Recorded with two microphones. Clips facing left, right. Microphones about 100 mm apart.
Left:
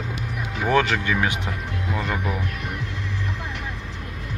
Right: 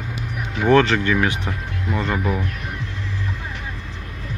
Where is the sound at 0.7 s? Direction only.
10° left (ahead or behind).